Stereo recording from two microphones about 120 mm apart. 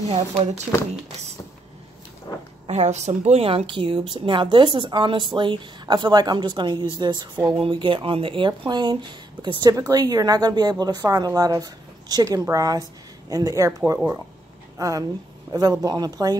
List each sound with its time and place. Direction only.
0.0 s speech: 60° right (ahead or behind)
2.6 s a woman's voice: 65° right (ahead or behind); by 16.3 s 35° right (ahead or behind)